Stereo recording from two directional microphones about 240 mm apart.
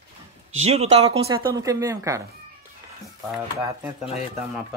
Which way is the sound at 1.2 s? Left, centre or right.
Centre.